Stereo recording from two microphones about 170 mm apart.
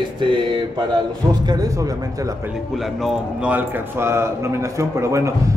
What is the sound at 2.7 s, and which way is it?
A man's voice, 5° right (ahead or behind).